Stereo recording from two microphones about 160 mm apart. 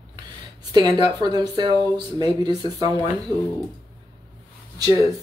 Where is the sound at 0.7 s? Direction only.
25° right (ahead or behind).